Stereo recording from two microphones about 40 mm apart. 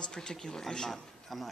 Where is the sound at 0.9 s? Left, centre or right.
Centre.